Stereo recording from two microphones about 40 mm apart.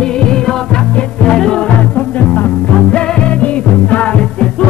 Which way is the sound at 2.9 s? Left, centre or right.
Left.